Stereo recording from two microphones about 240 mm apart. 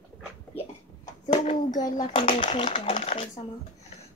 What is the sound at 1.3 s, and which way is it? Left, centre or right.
Child singing, left.